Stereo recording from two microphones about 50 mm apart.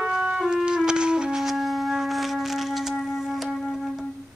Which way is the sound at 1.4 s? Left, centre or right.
Centre.